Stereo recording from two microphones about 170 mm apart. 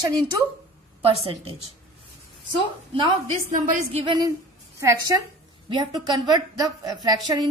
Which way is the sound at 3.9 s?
25° right (ahead or behind).